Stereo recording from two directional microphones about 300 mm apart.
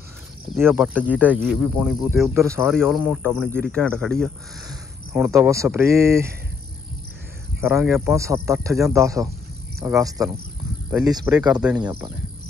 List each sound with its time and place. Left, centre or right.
0.6 s speech: centre
2.8 s speech: centre
4.6 s speech: centre
7.6 s speech: centre